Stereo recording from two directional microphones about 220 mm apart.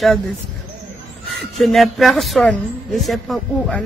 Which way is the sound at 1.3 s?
Centre (ahead or behind).